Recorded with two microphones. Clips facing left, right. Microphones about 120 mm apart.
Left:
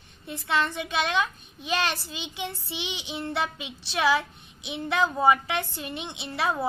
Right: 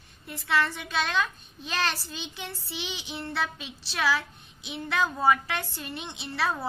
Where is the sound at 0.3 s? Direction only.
20° left (ahead or behind).